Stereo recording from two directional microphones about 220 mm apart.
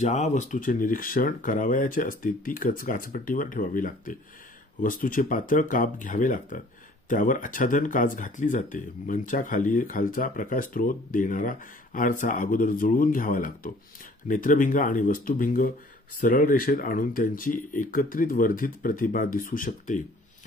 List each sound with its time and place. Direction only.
0.0 s speech: 30° left (ahead or behind)